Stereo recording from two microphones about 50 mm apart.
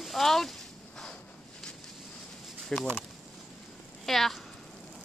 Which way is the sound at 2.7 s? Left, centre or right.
Centre.